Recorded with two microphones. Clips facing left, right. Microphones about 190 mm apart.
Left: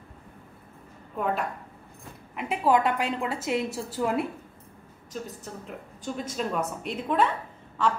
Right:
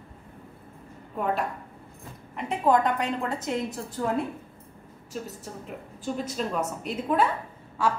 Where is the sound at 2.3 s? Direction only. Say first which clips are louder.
Even; 5° left (ahead or behind).